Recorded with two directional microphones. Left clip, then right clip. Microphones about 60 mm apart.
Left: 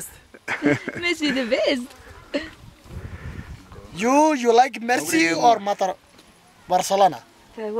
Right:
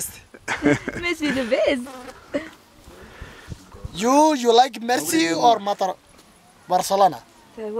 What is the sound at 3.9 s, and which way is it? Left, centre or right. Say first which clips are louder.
Speech: right 1 dB; centre.